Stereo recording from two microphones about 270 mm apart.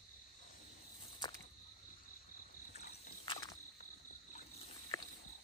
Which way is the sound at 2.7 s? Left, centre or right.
Left.